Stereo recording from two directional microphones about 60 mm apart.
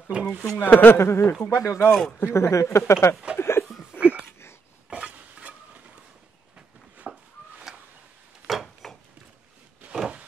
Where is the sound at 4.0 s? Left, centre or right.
Centre.